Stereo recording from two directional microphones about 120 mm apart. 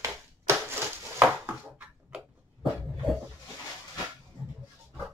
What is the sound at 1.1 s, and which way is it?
Dishes, 15° right (ahead or behind).